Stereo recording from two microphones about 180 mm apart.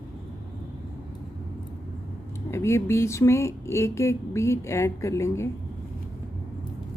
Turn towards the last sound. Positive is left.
turn(degrees=15)  # may be behind; listen again after turning